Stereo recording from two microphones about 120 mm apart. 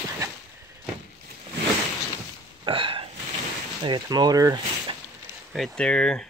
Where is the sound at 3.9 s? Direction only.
35° right (ahead or behind).